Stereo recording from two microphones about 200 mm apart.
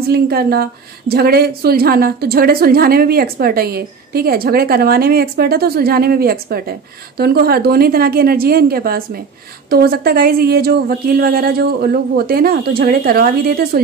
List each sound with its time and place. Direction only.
0.1 s a woman's voice: 50° right (ahead or behind)